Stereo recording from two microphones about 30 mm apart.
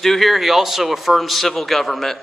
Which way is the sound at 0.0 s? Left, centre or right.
Centre.